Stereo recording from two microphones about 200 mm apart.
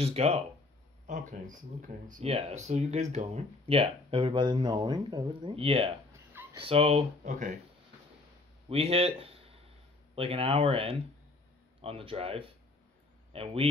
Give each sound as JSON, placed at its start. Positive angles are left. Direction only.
{"t": 0.0, "sound": "speech", "side_deg": -30}
{"t": 8.6, "sound": "speech", "side_deg": -30}